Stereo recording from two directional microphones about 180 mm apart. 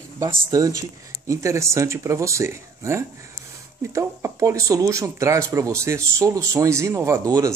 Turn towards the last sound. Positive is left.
turn(degrees=-20)  # may be behind; listen again after turning